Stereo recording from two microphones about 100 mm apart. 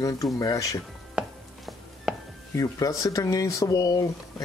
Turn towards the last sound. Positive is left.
turn(degrees=35)  # may be behind; listen again after turning